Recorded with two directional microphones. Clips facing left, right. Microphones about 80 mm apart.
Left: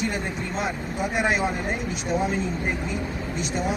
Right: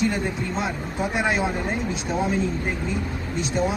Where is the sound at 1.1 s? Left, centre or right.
Centre.